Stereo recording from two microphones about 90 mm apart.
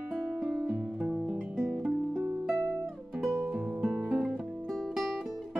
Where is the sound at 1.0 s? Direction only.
10° right (ahead or behind).